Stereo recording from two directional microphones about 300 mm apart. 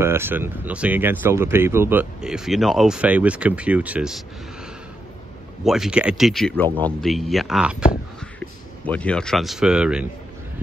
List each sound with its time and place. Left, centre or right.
0.0 s speech: centre
5.6 s speech: centre
8.8 s speech: centre